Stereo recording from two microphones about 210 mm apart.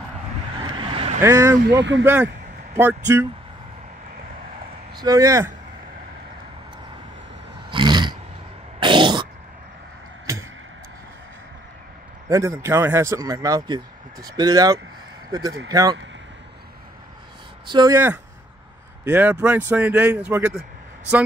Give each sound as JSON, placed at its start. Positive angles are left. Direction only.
{"t": 0.6, "sound": "vehicle", "side_deg": -25}
{"t": 1.2, "sound": "speech", "side_deg": -15}
{"t": 1.8, "sound": "speech", "side_deg": -60}
{"t": 2.7, "sound": "speech", "side_deg": -10}
{"t": 4.9, "sound": "speech", "side_deg": -15}
{"t": 7.7, "sound": "roar", "side_deg": -20}
{"t": 8.7, "sound": "throat clearing", "side_deg": -25}
{"t": 12.3, "sound": "speech", "side_deg": -15}
{"t": 17.6, "sound": "speech", "side_deg": -20}